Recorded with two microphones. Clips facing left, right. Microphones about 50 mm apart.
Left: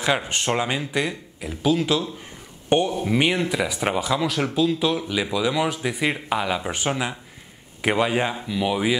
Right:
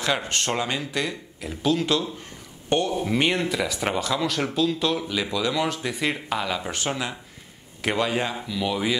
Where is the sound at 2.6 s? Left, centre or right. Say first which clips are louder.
Left 3 dB; centre.